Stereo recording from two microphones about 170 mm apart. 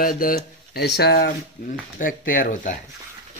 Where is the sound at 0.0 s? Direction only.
55° left (ahead or behind).